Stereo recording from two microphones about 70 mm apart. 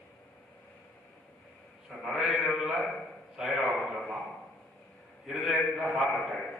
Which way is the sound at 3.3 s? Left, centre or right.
Centre.